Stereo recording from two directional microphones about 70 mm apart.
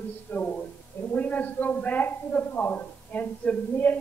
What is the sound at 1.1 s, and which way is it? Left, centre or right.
A man's voice, left.